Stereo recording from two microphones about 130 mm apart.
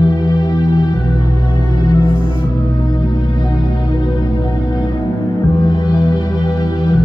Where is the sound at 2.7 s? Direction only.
30° left (ahead or behind).